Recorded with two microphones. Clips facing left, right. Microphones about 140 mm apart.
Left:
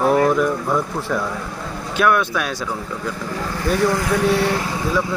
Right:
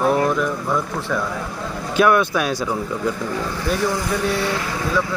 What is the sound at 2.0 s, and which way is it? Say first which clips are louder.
Speech: right 2 dB; 5° right (ahead or behind).